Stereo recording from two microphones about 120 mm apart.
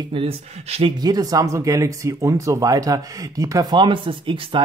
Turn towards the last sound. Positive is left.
turn(degrees=-45)  # may be behind; listen again after turning